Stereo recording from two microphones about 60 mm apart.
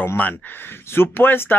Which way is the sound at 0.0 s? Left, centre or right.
Left.